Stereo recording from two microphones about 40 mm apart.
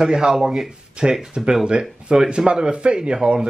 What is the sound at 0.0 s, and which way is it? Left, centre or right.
Speech, centre.